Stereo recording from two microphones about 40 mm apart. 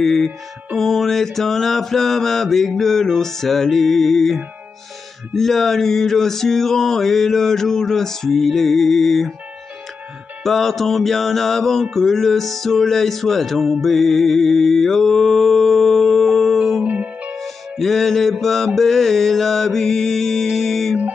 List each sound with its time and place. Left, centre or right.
0.0 s a sound: centre
10.4 s music: centre
16.8 s music: right
17.4 s music: centre